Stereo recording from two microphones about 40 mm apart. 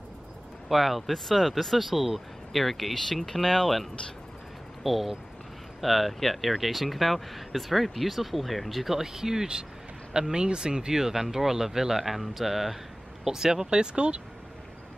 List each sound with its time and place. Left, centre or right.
0.7 s speech: centre
4.8 s speech: centre
8.9 s speech: centre
11.0 s speech: centre